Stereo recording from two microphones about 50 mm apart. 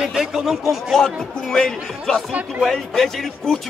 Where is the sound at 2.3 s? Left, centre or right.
Right.